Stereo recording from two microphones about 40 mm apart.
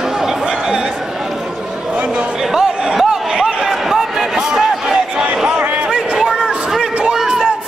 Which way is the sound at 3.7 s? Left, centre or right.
Centre.